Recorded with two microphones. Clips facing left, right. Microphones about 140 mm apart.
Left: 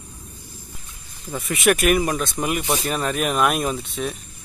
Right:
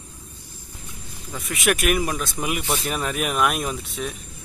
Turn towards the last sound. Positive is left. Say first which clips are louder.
# left 3 dB
turn(degrees=0)  # may be behind; listen again after turning